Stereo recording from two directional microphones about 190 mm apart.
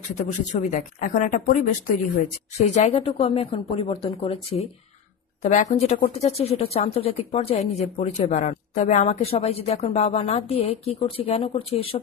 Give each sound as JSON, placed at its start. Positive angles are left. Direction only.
{"t": 0.2, "sound": "a woman's voice", "side_deg": 40}